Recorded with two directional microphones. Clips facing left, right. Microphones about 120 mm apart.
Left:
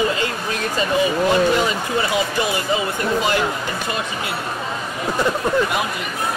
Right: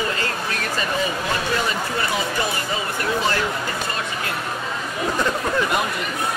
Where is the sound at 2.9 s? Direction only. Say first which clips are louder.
Left 3 dB; 15° left (ahead or behind).